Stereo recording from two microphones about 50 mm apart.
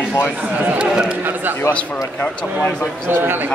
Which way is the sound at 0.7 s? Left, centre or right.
Centre.